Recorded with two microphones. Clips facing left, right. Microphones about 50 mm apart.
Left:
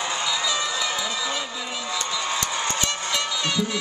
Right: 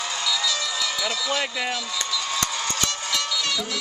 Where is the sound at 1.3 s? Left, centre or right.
Right.